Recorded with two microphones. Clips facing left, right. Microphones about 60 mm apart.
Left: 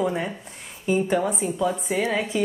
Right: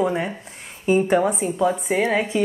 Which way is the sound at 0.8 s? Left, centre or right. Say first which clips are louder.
Right 4 dB; right.